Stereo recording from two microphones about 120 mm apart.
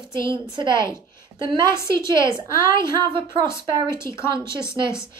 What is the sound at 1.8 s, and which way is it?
Speech, 25° left (ahead or behind).